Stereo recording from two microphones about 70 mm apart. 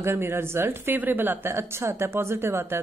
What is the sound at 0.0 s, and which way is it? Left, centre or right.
A woman's voice, right.